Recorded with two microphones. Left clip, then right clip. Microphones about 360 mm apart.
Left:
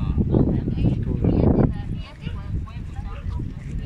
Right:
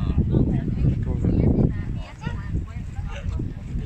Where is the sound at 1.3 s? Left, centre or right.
Left.